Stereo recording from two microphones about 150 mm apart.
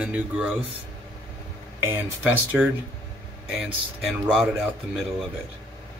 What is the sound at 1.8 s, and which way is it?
Speech, 15° right (ahead or behind).